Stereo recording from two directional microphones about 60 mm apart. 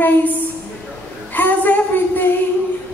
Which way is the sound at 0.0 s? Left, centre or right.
Left.